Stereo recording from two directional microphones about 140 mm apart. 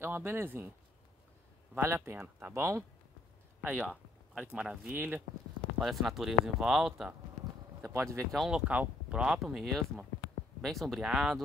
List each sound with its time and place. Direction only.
0.0 s speech: 15° right (ahead or behind)
1.8 s speech: 20° right (ahead or behind)
3.6 s speech: 10° right (ahead or behind)
5.8 s speech: centre (ahead or behind)
7.8 s speech: 20° right (ahead or behind)
8.3 s speech: centre (ahead or behind)